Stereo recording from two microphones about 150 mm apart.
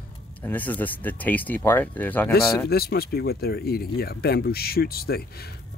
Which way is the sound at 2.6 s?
90° left.